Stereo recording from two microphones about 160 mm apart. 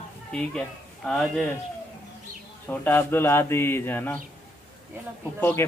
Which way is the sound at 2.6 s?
10° left (ahead or behind).